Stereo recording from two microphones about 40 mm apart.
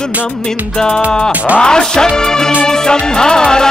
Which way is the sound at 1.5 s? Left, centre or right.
Centre.